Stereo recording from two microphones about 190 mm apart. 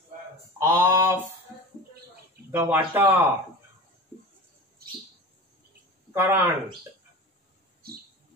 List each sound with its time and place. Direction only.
0.6 s mantra: 15° right (ahead or behind)
2.5 s speech: 10° right (ahead or behind)
6.1 s speech: 10° right (ahead or behind)
7.8 s a sound: 55° right (ahead or behind)